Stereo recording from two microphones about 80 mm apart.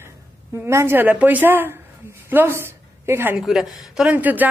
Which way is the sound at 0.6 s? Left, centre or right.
Right.